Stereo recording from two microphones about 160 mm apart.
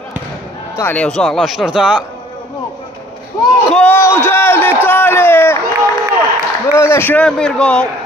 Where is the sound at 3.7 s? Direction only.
10° left (ahead or behind).